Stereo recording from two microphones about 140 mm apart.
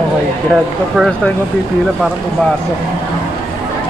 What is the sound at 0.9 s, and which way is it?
Speech, 5° left (ahead or behind).